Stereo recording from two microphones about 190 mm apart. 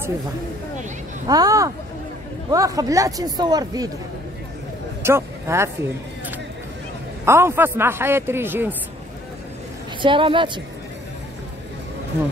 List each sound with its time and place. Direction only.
1.2 s speech: 20° right (ahead or behind)
5.0 s speech: 15° right (ahead or behind)
7.2 s a man's voice: 15° right (ahead or behind)
10.0 s speech: 25° right (ahead or behind)